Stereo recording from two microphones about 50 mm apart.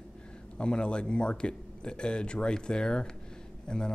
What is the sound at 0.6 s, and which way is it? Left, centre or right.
Speech, centre.